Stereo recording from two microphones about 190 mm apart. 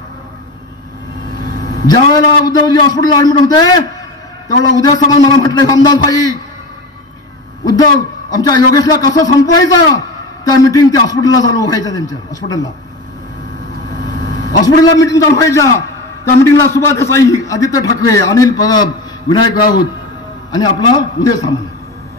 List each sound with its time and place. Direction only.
1.9 s a man's voice: 20° left (ahead or behind)
7.6 s a man's voice: 20° left (ahead or behind)
14.6 s a man's voice: 20° left (ahead or behind)
20.5 s a man's voice: 20° left (ahead or behind)